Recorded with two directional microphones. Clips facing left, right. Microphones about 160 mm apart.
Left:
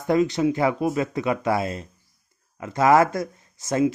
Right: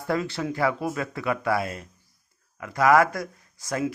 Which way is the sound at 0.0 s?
20° left (ahead or behind).